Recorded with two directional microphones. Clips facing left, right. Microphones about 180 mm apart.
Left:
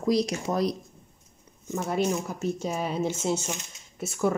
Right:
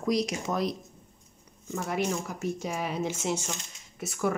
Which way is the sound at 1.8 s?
25° left (ahead or behind).